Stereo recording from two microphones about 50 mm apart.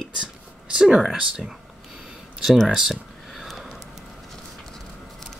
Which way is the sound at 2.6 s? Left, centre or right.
Centre.